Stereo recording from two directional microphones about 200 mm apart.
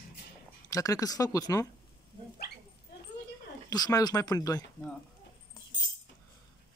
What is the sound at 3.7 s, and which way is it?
Speech, 20° left (ahead or behind).